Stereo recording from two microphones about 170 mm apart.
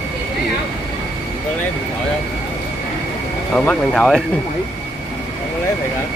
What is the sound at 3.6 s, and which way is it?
Speech, 5° left (ahead or behind).